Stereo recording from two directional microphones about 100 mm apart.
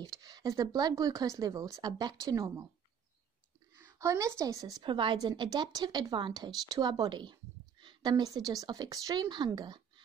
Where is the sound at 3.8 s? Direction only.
30° right (ahead or behind).